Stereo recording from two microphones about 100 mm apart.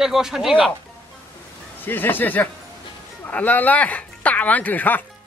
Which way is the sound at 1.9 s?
20° left (ahead or behind).